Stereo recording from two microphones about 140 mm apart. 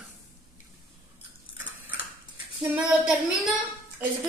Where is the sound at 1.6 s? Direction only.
10° right (ahead or behind).